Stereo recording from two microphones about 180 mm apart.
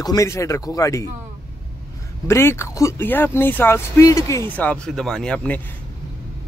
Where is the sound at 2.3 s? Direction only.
15° left (ahead or behind).